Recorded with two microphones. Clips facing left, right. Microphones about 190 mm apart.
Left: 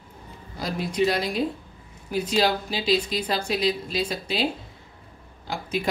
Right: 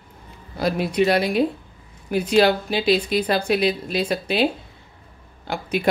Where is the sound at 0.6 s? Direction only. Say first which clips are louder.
Right 4 dB; 65° right (ahead or behind).